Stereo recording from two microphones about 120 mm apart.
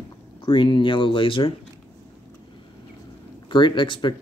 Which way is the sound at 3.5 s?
40° left (ahead or behind).